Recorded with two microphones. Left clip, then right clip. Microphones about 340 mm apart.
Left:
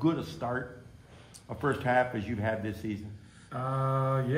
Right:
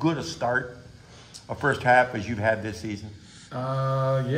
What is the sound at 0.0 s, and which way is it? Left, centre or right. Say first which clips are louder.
A man's voice: right 5 dB; right.